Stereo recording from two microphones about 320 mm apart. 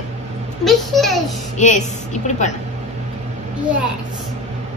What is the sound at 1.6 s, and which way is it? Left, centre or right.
Speech, left.